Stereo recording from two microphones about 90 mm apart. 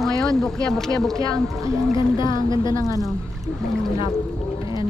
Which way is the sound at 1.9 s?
60° left (ahead or behind).